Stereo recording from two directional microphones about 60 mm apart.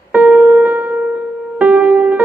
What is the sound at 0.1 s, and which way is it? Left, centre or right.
Music, right.